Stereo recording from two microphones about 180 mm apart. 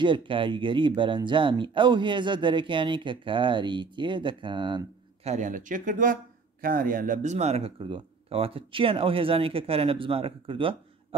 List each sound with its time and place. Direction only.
0.0 s speech: 25° right (ahead or behind)
5.3 s speech: 45° right (ahead or behind)